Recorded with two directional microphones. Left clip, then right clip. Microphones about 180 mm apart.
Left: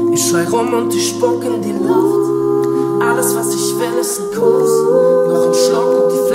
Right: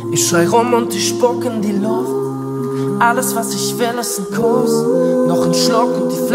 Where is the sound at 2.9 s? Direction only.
25° left (ahead or behind).